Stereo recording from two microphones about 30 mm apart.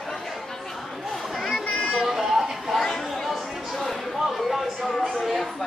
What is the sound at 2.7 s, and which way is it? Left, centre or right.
Chatter, centre.